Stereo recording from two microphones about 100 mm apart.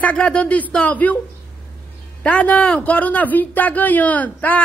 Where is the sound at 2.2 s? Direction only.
15° left (ahead or behind).